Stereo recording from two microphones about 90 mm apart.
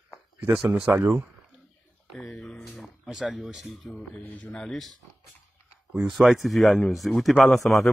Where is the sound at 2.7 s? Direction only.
Centre (ahead or behind).